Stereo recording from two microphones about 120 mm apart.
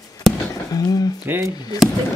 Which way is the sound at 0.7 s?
30° left (ahead or behind).